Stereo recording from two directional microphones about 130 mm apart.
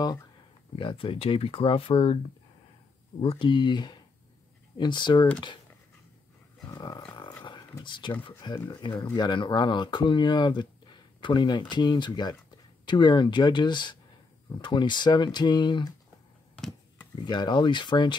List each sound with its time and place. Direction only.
0.7 s speech: 40° left (ahead or behind)
3.2 s speech: 45° left (ahead or behind)
6.7 s roaring cats: 30° left (ahead or behind)
7.0 s a sound: 35° left (ahead or behind)
7.8 s speech: 35° left (ahead or behind)
16.5 s a sound: 5° left (ahead or behind)
17.3 s speech: 35° left (ahead or behind)